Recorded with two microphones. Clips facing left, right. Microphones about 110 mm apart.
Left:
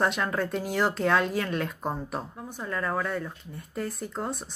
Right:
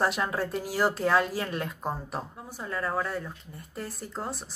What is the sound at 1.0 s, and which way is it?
Speech, 5° right (ahead or behind).